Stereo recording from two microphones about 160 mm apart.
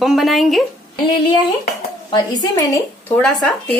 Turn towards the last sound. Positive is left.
turn(degrees=10)  # may be behind; listen again after turning